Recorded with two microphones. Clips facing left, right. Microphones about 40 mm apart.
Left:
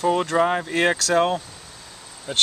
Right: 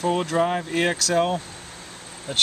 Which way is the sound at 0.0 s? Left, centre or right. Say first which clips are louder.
Left 2 dB; centre.